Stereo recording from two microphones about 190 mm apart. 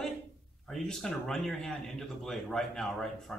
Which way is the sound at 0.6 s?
5° left (ahead or behind).